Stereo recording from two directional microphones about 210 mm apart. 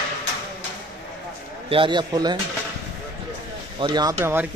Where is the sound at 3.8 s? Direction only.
20° right (ahead or behind).